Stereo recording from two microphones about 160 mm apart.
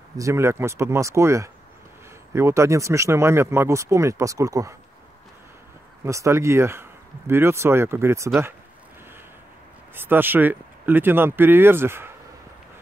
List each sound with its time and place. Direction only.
0.2 s speech: 15° right (ahead or behind)
6.0 s speech: 20° right (ahead or behind)
9.9 s speech: 15° right (ahead or behind)